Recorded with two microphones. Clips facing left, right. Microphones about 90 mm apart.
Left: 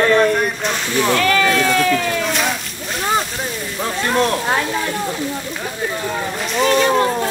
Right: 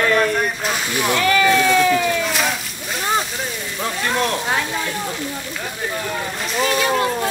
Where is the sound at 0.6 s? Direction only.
5° right (ahead or behind).